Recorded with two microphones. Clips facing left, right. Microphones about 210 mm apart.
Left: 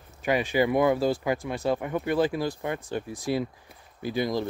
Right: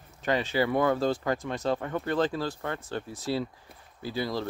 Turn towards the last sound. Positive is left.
turn(degrees=15)  # may be behind; listen again after turning